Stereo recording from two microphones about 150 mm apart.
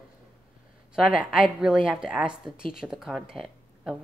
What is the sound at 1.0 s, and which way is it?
Speech, 5° right (ahead or behind).